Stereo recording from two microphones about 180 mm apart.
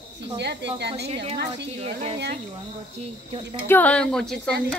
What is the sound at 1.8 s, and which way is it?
Speech, 35° right (ahead or behind).